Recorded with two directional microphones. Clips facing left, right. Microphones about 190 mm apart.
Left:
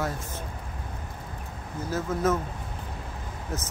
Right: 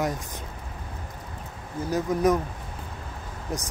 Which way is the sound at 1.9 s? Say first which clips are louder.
Right 4 dB; 15° right (ahead or behind).